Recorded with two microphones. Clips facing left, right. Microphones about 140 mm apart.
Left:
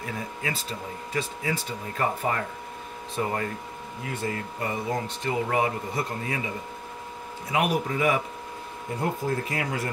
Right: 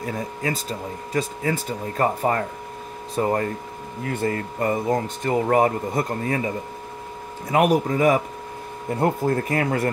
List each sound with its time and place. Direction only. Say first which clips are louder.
0.0 s speech: right 6 dB; 40° right (ahead or behind)
4.0 s speech: right 7 dB; 50° right (ahead or behind)
7.5 s speech: right 7 dB; 45° right (ahead or behind)
9.0 s speech: right 7 dB; 55° right (ahead or behind)